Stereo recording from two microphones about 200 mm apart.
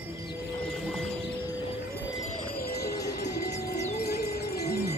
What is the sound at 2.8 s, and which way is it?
Music, 55° left (ahead or behind).